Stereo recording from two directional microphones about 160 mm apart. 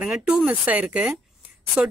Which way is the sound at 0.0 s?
5° right (ahead or behind).